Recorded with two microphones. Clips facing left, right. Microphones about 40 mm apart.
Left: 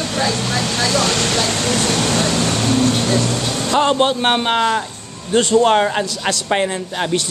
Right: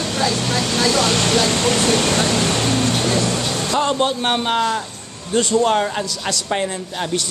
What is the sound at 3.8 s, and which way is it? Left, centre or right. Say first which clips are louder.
A man's voice: left 4 dB; left.